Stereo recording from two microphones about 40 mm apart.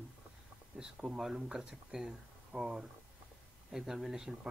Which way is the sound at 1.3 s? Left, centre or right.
Right.